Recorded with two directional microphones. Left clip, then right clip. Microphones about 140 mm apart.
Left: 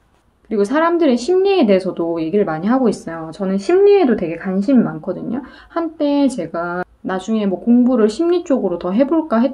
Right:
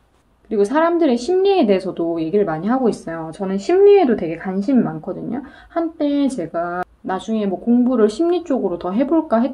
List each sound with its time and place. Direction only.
0.5 s speech: 15° left (ahead or behind)